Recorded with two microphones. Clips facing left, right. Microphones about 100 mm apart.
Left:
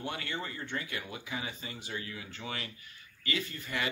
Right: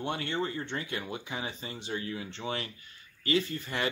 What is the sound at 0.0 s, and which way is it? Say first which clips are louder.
Speech: right 5 dB; 30° right (ahead or behind).